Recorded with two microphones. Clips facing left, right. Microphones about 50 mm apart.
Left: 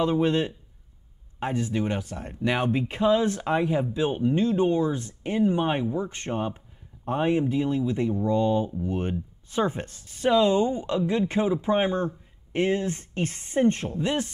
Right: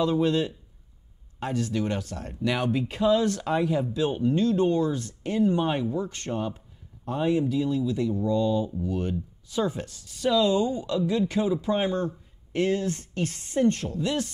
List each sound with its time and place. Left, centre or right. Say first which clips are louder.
0.0 s speech: left 1 dB; left